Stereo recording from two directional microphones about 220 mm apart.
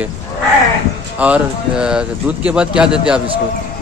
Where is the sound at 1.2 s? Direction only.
5° right (ahead or behind).